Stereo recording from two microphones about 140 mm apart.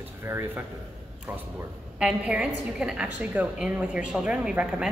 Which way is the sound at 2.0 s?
5° right (ahead or behind).